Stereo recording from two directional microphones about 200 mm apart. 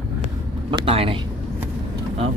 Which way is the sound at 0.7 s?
25° right (ahead or behind).